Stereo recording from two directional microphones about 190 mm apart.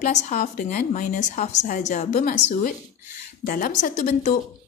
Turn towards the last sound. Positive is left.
turn(degrees=40)  # may be behind; listen again after turning